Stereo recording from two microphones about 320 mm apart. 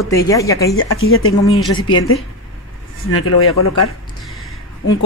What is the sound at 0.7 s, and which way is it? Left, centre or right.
Speech, left.